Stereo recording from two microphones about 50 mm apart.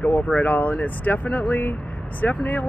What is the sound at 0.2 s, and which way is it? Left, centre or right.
Speech, left.